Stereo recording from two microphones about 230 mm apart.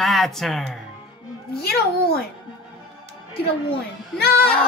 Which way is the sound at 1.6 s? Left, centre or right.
Left.